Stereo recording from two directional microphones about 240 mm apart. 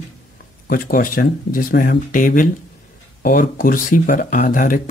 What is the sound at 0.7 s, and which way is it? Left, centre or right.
Speech, left.